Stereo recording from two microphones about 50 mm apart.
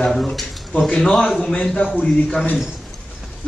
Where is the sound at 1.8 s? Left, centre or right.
Left.